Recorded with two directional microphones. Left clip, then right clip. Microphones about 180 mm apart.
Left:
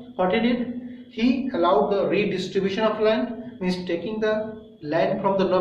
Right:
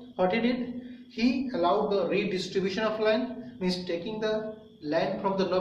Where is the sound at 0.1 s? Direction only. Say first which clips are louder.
Left 4 dB; 20° right (ahead or behind).